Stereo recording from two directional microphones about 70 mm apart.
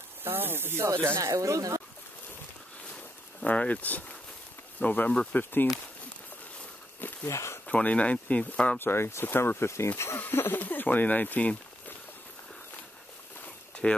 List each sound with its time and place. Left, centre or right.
0.2 s speech: right
1.2 s speech: right
3.4 s speech: centre
7.2 s speech: left
7.6 s speech: centre
8.7 s speech: left
13.8 s speech: centre